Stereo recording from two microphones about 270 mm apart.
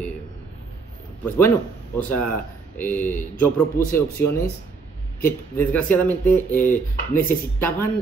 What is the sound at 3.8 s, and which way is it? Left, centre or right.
Speech, left.